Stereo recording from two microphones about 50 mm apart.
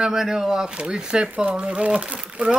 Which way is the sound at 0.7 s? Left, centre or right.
Centre.